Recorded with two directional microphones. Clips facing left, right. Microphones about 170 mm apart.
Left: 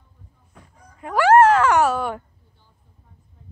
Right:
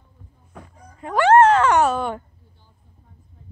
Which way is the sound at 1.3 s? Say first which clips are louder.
Even; 5° left (ahead or behind).